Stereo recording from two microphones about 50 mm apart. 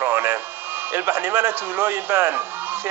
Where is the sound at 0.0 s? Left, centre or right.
Right.